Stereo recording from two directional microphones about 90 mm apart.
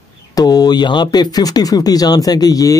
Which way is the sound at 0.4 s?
45° left (ahead or behind).